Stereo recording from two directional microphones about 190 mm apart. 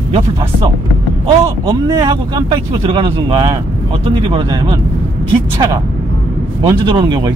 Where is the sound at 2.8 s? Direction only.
30° right (ahead or behind).